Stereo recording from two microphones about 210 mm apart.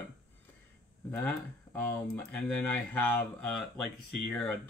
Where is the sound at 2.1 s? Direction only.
10° left (ahead or behind).